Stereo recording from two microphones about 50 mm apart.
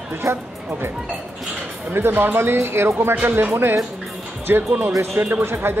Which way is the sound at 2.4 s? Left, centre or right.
Right.